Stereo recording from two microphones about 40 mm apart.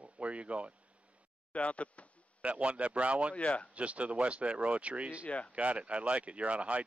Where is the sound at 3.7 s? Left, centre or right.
Right.